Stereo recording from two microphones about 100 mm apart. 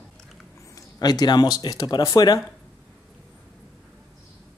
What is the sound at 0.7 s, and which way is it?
Speech, 40° left (ahead or behind).